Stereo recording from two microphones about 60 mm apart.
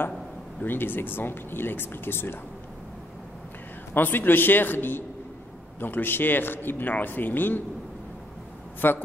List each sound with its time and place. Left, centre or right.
0.6 s a man's voice: left
3.9 s a man's voice: left
8.8 s a man's voice: left